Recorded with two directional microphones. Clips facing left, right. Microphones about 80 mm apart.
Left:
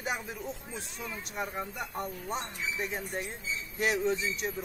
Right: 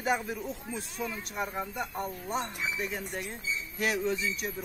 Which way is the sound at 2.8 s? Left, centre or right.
Left.